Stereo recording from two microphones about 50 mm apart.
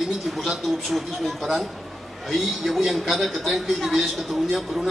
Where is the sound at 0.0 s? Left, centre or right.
Centre.